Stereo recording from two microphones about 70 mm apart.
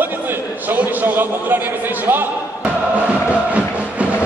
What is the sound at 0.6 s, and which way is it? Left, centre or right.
Speech, right.